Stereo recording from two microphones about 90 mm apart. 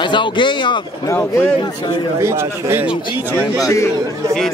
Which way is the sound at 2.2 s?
30° right (ahead or behind).